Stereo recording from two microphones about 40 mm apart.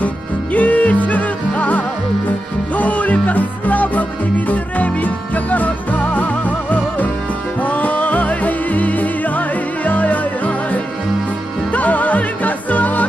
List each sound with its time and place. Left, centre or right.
0.0 s music: left